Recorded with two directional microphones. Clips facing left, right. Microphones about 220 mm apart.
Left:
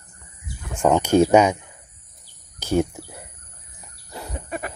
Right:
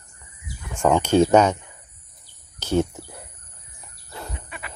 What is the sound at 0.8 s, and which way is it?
Speech, 10° left (ahead or behind).